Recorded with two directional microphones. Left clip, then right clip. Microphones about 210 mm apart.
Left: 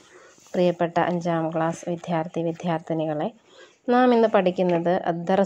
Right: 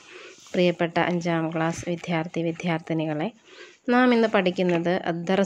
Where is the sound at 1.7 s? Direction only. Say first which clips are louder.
Even; 25° right (ahead or behind).